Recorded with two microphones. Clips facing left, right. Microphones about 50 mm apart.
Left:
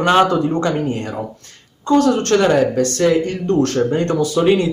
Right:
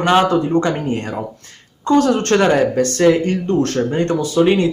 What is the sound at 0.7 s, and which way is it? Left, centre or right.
Speech, right.